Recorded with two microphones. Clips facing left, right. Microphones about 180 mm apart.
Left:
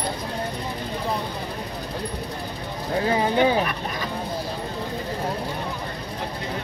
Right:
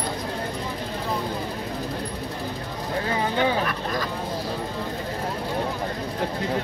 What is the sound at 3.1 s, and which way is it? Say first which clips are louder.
Speech: left 4 dB; 20° left (ahead or behind).